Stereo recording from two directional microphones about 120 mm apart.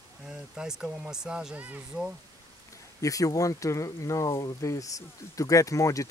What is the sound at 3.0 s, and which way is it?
Speech, 30° left (ahead or behind).